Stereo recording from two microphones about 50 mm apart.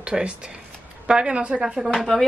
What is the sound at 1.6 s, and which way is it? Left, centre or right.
Speech, centre.